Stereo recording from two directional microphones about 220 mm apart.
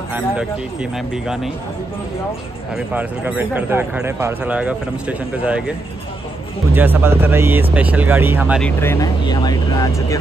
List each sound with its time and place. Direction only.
0.9 s speech: 5° right (ahead or behind)
2.7 s speech: 5° right (ahead or behind)
6.7 s speech: 10° right (ahead or behind)
8.6 s speech: 10° left (ahead or behind)